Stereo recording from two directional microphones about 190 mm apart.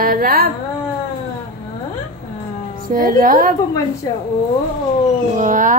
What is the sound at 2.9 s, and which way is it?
Speech, 50° right (ahead or behind).